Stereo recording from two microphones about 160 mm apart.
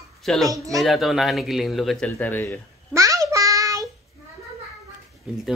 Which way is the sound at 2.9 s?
20° right (ahead or behind).